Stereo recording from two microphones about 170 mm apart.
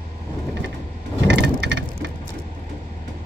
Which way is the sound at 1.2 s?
90° right.